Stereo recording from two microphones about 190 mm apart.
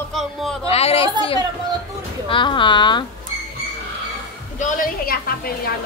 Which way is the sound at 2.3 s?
25° left (ahead or behind).